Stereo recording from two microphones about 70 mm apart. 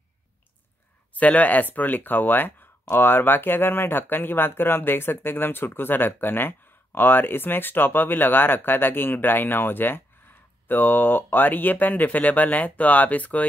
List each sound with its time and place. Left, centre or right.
1.1 s speech: left